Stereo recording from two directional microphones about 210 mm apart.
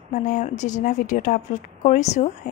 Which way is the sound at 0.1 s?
35° left (ahead or behind).